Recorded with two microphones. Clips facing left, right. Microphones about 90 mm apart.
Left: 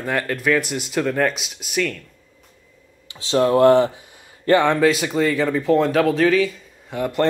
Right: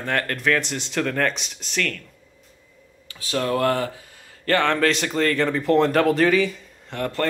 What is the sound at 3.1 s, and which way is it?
Speech, 25° left (ahead or behind).